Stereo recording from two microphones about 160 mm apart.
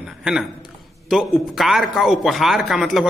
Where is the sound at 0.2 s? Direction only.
Centre (ahead or behind).